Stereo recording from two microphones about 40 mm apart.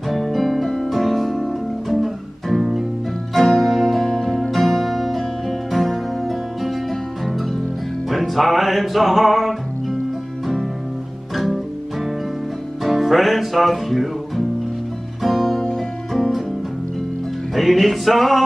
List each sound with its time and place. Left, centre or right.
0.1 s music: centre
11.3 s music: centre
12.8 s music: centre
15.6 s music: centre
17.6 s music: centre